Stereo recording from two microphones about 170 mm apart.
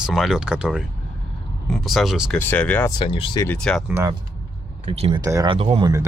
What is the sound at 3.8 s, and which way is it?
Speech, 15° right (ahead or behind).